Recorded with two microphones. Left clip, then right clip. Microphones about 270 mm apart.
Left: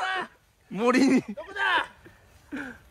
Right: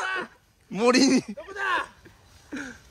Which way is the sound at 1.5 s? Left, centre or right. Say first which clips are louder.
Left 2 dB; left.